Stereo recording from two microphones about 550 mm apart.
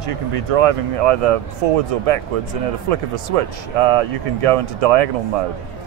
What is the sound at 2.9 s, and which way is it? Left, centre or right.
Speech, right.